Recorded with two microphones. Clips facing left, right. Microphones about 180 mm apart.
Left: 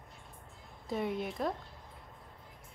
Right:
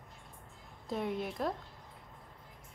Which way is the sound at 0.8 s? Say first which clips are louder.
Left 1 dB; centre (ahead or behind).